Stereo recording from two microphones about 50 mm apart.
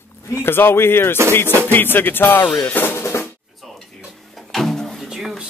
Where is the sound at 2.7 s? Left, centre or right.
Left.